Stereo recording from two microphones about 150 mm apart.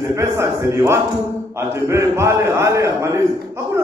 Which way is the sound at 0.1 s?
20° right (ahead or behind).